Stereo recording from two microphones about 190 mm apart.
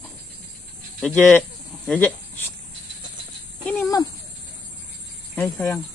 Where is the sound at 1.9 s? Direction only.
10° left (ahead or behind).